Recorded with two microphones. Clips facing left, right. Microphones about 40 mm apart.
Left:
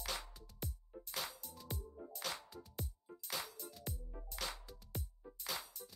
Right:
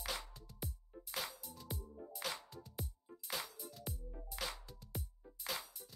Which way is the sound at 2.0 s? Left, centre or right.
Left.